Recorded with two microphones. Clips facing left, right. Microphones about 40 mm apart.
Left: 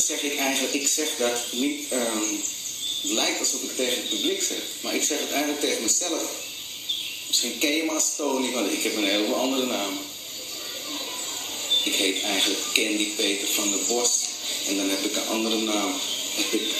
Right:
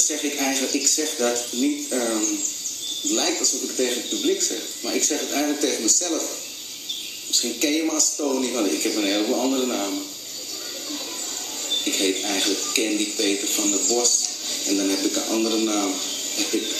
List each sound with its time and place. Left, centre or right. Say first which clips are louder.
0.0 s a man's voice: right 2 dB; left
7.3 s a man's voice: right 2 dB; left
11.7 s speech: right 1 dB; left